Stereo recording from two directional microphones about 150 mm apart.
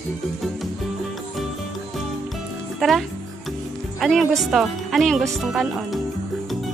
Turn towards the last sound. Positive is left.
turn(degrees=0)  # may be behind; listen again after turning